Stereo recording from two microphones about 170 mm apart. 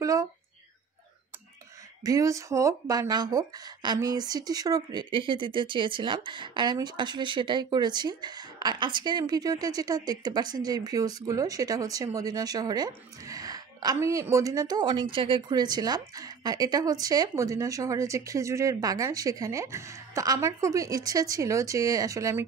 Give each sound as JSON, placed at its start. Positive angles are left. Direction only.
{"t": 0.0, "sound": "speech", "side_deg": -20}
{"t": 2.0, "sound": "speech", "side_deg": -20}